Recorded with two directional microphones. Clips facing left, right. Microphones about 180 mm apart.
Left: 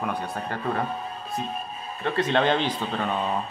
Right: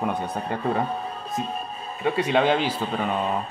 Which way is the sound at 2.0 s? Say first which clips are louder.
Right 2 dB; 10° right (ahead or behind).